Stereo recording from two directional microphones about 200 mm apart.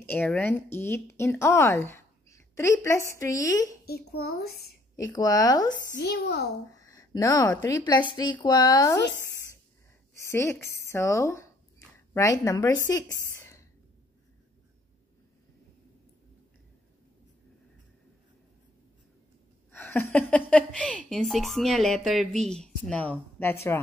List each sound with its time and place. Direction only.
0.0 s a woman's voice: 10° left (ahead or behind)
3.8 s a woman's voice: 50° left (ahead or behind)
4.9 s speech: 20° left (ahead or behind)
5.9 s a woman's voice: 50° left (ahead or behind)
6.7 s speech: 15° left (ahead or behind)
10.3 s speech: 15° left (ahead or behind)
13.3 s a sound: 15° left (ahead or behind)
19.7 s a woman's voice: 10° left (ahead or behind)